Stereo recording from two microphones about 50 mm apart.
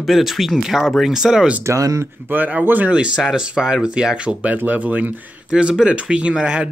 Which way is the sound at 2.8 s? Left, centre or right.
Right.